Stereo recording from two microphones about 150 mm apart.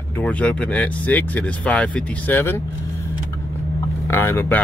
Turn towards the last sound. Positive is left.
turn(degrees=15)  # may be behind; listen again after turning